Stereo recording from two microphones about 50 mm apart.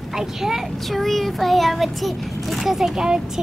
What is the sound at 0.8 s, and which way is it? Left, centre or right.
A child's voice, centre.